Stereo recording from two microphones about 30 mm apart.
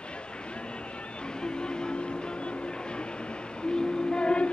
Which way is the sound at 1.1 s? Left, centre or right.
Left.